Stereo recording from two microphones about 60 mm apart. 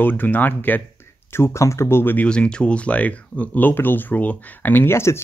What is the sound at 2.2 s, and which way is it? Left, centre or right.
Speech, centre.